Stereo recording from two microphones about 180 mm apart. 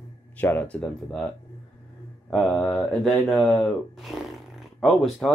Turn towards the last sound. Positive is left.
turn(degrees=0)  # may be behind; listen again after turning